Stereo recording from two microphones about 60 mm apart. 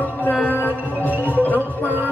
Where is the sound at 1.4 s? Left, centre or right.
Left.